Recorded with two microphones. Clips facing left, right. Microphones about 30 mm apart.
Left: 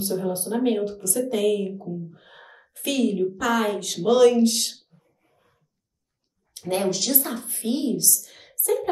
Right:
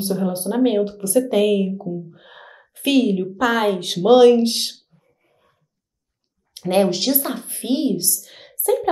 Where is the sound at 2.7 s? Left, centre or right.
Right.